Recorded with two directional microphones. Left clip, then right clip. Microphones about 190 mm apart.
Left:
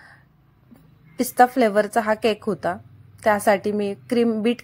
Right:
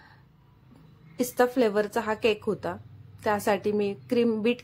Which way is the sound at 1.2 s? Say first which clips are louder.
Left 7 dB; 25° left (ahead or behind).